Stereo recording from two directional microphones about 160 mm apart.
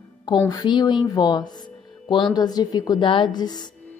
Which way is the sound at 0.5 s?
25° left (ahead or behind).